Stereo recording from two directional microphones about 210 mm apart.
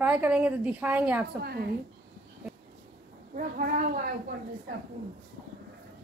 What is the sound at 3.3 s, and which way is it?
Speech, 40° right (ahead or behind).